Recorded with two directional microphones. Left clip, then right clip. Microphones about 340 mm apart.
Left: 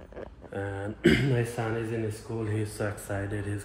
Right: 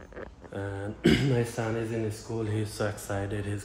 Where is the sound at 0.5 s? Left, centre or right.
Centre.